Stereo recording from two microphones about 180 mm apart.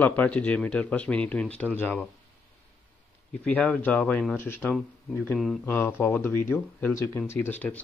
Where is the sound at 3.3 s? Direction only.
5° left (ahead or behind).